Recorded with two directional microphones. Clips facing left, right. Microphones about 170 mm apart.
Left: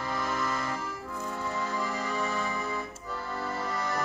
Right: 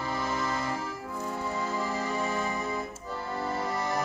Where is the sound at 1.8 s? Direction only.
20° right (ahead or behind).